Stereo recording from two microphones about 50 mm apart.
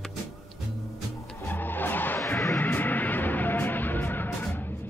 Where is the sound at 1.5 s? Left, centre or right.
Left.